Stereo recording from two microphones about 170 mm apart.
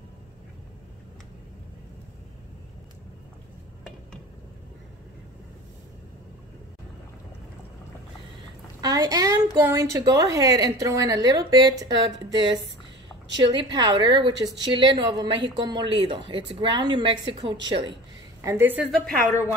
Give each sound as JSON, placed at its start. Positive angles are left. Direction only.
{"t": 8.8, "sound": "a woman's voice", "side_deg": -20}
{"t": 13.5, "sound": "a woman's voice", "side_deg": -25}
{"t": 18.4, "sound": "a woman's voice", "side_deg": -15}
{"t": 18.9, "sound": "a woman's voice", "side_deg": 5}